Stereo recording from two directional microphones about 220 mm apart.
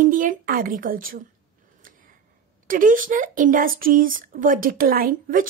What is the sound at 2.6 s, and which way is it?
Speech, 40° right (ahead or behind).